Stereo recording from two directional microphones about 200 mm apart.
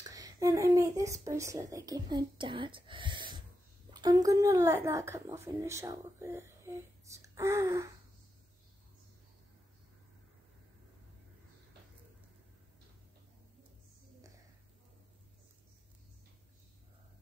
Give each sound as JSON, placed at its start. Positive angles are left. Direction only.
{"t": 0.1, "sound": "a woman's voice", "side_deg": -15}